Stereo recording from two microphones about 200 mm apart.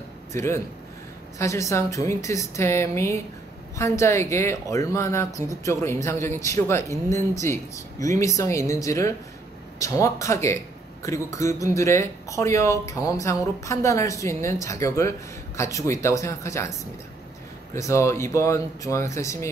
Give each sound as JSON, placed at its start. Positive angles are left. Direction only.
{"t": 0.3, "sound": "a man's voice", "side_deg": 15}
{"t": 17.7, "sound": "speech", "side_deg": 15}